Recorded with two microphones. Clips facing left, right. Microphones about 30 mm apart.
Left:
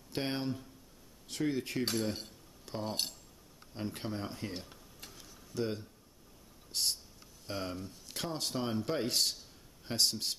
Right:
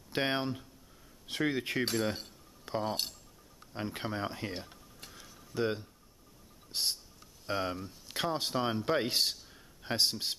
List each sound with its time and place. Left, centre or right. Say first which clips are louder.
0.1 s speech: right 4 dB; right
1.3 s speech: right 2 dB; right
2.6 s cutlery: right 3 dB; centre
3.7 s speech: right 2 dB; centre
4.6 s tick-tock: right 1 dB; centre
5.2 s a sound: right 3 dB; right
7.4 s speech: right 5 dB; centre